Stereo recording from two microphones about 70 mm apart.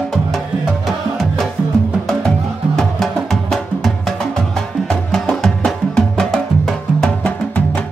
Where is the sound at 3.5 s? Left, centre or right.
Centre.